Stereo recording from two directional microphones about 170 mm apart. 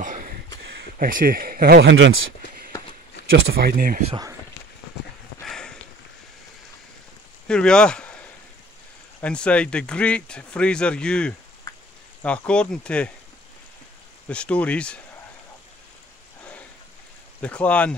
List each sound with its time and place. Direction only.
0.0 s a sound: 50° right (ahead or behind)
0.9 s speech: 55° right (ahead or behind); by 2.7 s 75° right (ahead or behind)
3.3 s speech: 60° right (ahead or behind)
4.1 s speech: 20° right (ahead or behind)
5.4 s a sound: 5° left (ahead or behind)
7.4 s speech: 5° left (ahead or behind)
9.2 s speech: 5° left (ahead or behind)
14.3 s speech: 5° left (ahead or behind)
17.4 s speech: 10° left (ahead or behind)